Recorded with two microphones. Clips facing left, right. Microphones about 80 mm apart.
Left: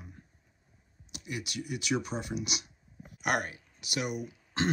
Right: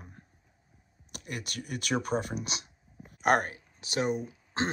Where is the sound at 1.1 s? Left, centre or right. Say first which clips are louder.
Left 1 dB; right.